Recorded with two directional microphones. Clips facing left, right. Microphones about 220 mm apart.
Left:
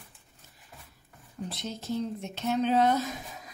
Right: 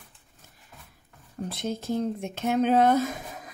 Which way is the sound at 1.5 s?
55° right (ahead or behind).